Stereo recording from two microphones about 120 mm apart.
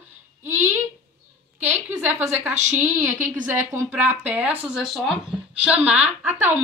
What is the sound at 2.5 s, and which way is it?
Speech, 75° right (ahead or behind).